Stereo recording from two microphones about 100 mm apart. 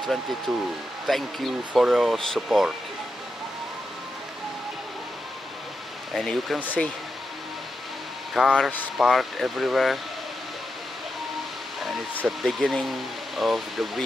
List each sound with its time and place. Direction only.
0.0 s speech: centre (ahead or behind)
6.1 s speech: centre (ahead or behind)
6.6 s speech: 15° left (ahead or behind)
8.4 s speech: 5° right (ahead or behind)
12.3 s speech: centre (ahead or behind)